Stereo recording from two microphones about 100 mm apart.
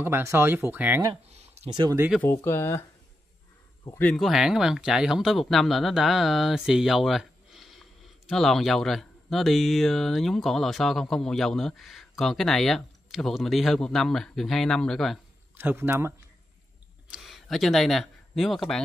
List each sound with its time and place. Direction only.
0.0 s speech: 25° right (ahead or behind)
1.3 s a sound: 90° right
2.2 s speech: 25° left (ahead or behind)
4.1 s speech: centre (ahead or behind)
15.5 s speech: 20° right (ahead or behind)
17.1 s speech: centre (ahead or behind)